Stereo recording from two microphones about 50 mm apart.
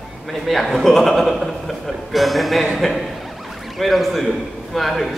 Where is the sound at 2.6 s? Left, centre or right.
Centre.